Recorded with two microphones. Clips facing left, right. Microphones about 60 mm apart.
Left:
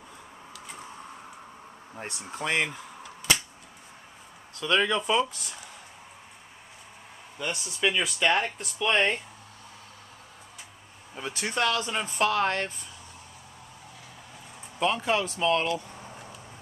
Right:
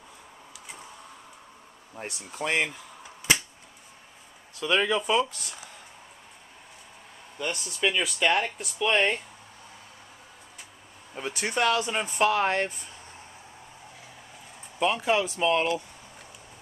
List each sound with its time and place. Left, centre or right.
2.4 s speech: centre
4.6 s speech: centre
7.3 s speech: centre
11.2 s speech: right
14.8 s speech: centre
15.2 s speech: centre